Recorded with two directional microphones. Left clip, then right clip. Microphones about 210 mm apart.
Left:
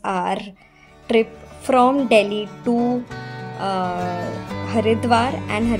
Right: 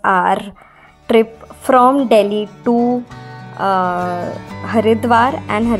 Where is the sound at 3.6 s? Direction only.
15° right (ahead or behind).